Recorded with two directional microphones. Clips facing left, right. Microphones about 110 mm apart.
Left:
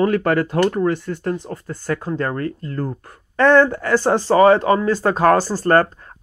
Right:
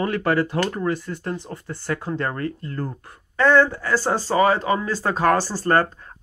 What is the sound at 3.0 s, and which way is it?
Speech, 50° left (ahead or behind).